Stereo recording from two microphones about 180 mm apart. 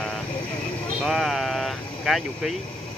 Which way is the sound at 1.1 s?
Centre (ahead or behind).